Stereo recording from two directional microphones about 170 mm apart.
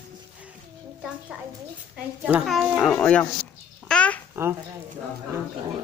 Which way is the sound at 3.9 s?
5° left (ahead or behind).